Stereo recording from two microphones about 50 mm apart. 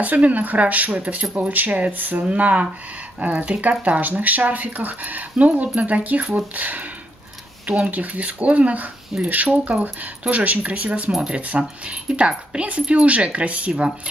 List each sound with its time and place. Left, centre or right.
0.0 s speech: right
11.1 s speech: centre
11.3 s speech: right